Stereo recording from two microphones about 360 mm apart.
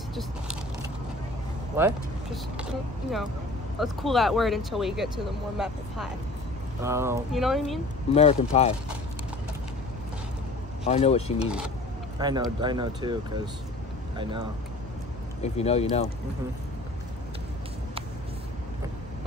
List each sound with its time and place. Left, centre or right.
2.5 s speech: centre
8.1 s speech: centre
10.9 s speech: centre
11.4 s speech: centre
15.4 s speech: centre